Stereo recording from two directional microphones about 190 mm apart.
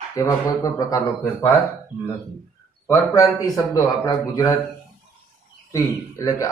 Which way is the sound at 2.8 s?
15° left (ahead or behind).